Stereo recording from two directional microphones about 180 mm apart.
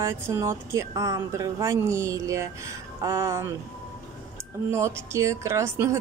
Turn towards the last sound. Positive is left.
turn(degrees=-15)  # may be behind; listen again after turning